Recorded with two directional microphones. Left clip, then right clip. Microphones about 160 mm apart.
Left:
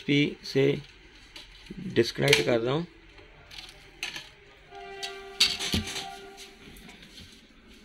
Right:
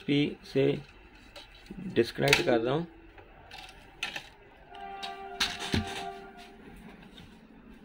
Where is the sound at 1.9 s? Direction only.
10° left (ahead or behind).